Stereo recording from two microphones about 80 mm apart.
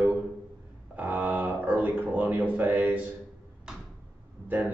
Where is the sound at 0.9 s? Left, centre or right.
Right.